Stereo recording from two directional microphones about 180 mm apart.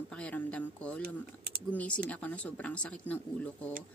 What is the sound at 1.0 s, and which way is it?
Speech, 55° right (ahead or behind).